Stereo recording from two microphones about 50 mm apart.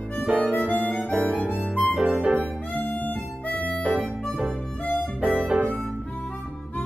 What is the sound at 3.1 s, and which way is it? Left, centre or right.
Harmonica, left.